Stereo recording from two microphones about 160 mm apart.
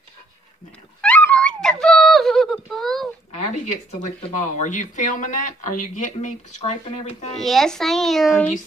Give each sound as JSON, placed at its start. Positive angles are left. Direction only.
{"t": 1.0, "sound": "a sound", "side_deg": 5}
{"t": 4.4, "sound": "speech", "side_deg": 50}
{"t": 7.3, "sound": "a child's voice", "side_deg": 0}